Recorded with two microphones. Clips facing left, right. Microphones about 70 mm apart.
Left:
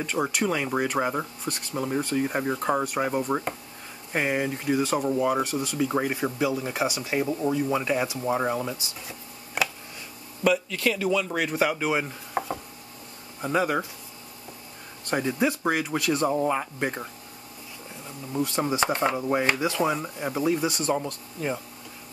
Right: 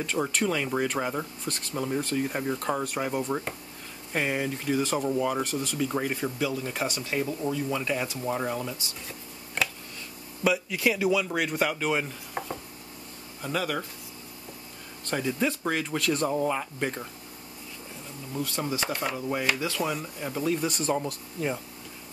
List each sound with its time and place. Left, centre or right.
0.0 s speech: centre
2.2 s speech: left
2.8 s speech: centre
9.6 s a sound: centre
10.4 s speech: centre
11.2 s speech: centre
13.4 s speech: left
15.0 s speech: centre
18.3 s speech: left
20.7 s speech: centre